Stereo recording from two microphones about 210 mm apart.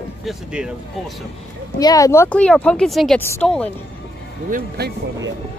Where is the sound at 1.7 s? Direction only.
15° left (ahead or behind).